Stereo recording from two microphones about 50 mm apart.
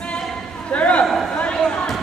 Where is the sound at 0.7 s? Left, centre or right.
Left.